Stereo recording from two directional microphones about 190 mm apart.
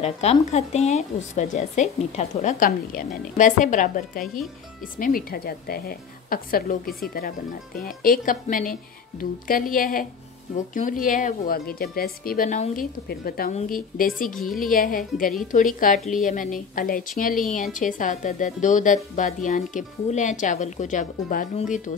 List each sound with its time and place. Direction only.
0.0 s a woman's voice: 35° left (ahead or behind)
13.1 s a woman's voice: 50° left (ahead or behind)